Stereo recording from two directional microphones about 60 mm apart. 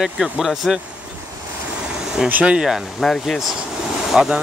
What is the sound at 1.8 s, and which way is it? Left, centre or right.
Vehicle, centre.